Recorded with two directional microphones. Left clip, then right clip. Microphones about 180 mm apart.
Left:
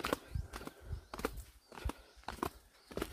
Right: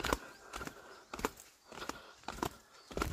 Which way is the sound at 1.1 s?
60° right (ahead or behind).